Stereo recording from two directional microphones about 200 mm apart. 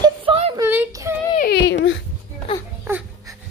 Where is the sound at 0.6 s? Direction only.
10° right (ahead or behind).